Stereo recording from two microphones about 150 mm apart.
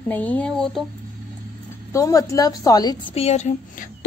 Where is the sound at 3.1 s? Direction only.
45° left (ahead or behind).